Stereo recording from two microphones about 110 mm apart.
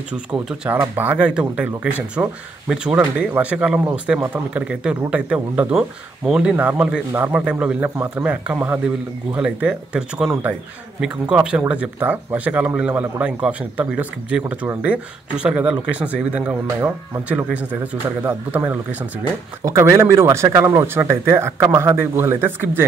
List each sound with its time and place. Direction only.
0.1 s speech: 10° right (ahead or behind)
16.6 s speech: 25° right (ahead or behind)
17.3 s speech: 10° right (ahead or behind)
18.0 s speech: 20° right (ahead or behind)
19.6 s speech: 25° right (ahead or behind)